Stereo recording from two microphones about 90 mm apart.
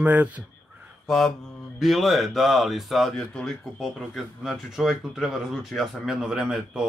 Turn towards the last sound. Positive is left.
turn(degrees=-10)  # may be behind; listen again after turning